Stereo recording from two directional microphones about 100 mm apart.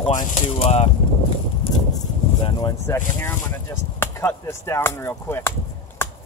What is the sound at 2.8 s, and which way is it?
Speech, 25° left (ahead or behind).